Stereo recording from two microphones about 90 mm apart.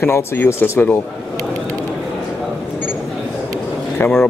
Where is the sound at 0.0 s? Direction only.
30° left (ahead or behind).